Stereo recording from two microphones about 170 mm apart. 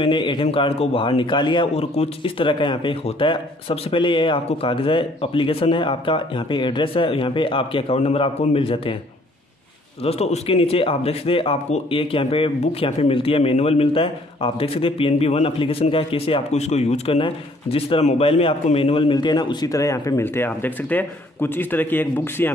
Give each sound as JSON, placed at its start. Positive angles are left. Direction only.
{"t": 0.0, "sound": "a man's voice", "side_deg": 30}
{"t": 10.0, "sound": "a man's voice", "side_deg": 40}